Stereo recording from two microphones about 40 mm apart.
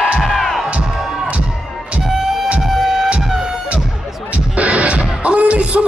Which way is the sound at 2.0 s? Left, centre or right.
Centre.